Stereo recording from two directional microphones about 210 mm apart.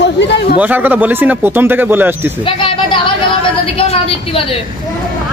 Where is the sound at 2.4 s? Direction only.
25° left (ahead or behind).